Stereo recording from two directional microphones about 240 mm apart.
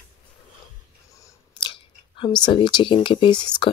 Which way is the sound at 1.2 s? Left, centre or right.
Centre.